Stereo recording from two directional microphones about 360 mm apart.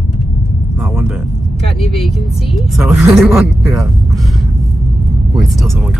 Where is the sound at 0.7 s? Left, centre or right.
Centre.